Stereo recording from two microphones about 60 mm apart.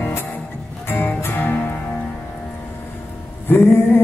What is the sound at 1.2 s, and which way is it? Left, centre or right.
Music, left.